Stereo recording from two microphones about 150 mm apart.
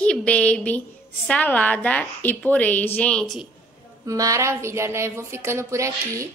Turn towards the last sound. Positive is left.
turn(degrees=-20)  # may be behind; listen again after turning